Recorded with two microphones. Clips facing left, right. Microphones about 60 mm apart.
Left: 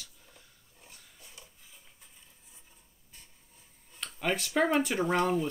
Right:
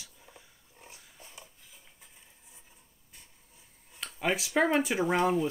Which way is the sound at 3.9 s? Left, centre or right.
Centre.